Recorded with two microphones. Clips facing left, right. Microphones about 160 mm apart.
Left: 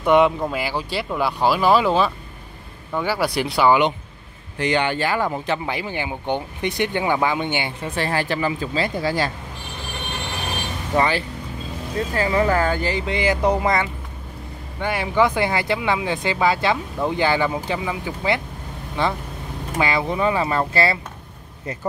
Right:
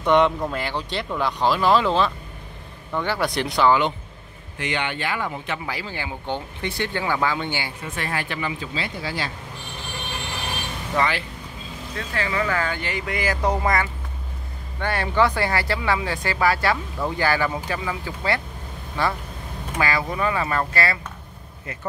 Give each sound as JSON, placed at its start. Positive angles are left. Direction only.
{"t": 0.0, "sound": "speech", "side_deg": 10}
{"t": 4.6, "sound": "speech", "side_deg": 35}
{"t": 5.7, "sound": "speech", "side_deg": 20}
{"t": 7.8, "sound": "speech", "side_deg": 30}
{"t": 11.0, "sound": "speech", "side_deg": 35}